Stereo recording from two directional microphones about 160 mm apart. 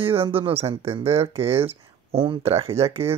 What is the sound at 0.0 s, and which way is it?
Speech, 35° right (ahead or behind).